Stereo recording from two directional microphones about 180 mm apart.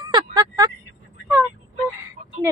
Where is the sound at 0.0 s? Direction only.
20° right (ahead or behind).